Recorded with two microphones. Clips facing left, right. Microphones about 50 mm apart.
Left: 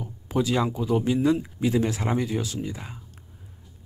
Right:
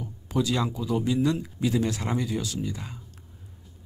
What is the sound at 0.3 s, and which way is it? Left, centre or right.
Speech, centre.